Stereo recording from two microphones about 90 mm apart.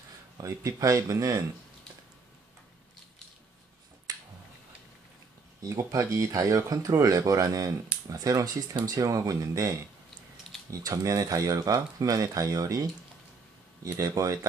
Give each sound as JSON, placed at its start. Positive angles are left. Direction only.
{"t": 0.4, "sound": "speech", "side_deg": -40}
{"t": 4.1, "sound": "a sound", "side_deg": -45}
{"t": 5.6, "sound": "speech", "side_deg": -40}
{"t": 13.8, "sound": "speech", "side_deg": -40}